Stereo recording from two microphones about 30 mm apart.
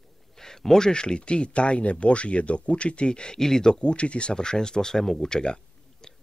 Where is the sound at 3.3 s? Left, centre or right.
Centre.